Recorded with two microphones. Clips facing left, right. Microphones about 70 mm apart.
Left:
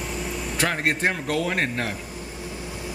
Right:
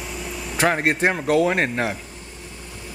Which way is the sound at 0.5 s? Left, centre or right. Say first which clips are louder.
Right 5 dB; right.